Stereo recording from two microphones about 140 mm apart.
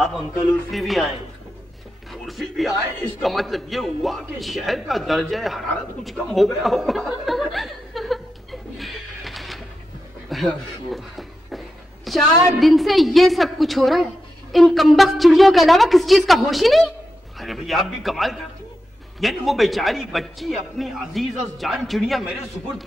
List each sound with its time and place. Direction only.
0.0 s a man's voice: centre (ahead or behind)
2.2 s a man's voice: centre (ahead or behind)
10.3 s a sound: centre (ahead or behind)
12.5 s a man's voice: centre (ahead or behind)